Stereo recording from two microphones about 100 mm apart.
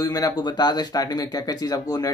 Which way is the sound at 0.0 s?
35° left (ahead or behind).